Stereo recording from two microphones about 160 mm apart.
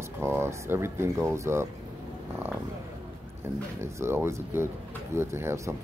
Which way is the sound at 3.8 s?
15° right (ahead or behind).